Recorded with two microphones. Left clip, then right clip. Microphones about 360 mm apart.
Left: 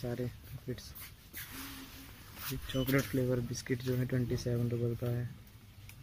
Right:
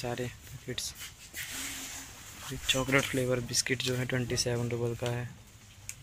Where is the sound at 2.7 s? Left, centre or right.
Right.